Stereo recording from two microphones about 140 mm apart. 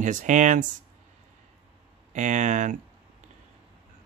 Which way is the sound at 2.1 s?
60° right (ahead or behind).